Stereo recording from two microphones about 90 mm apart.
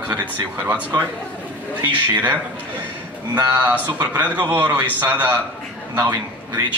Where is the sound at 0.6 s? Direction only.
20° right (ahead or behind).